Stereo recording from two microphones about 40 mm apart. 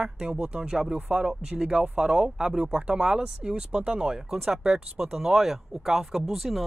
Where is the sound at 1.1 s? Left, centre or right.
Centre.